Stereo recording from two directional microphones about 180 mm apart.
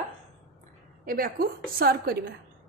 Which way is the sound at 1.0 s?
55° right (ahead or behind).